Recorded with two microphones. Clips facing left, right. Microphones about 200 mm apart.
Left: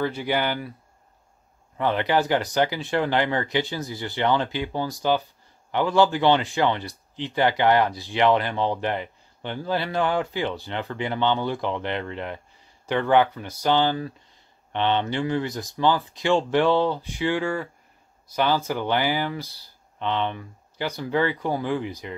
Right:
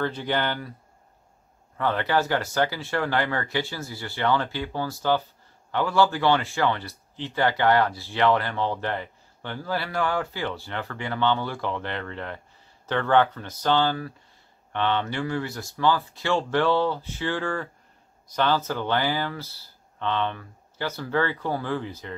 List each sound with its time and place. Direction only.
0.0 s speech: 10° left (ahead or behind)
1.8 s speech: 15° left (ahead or behind)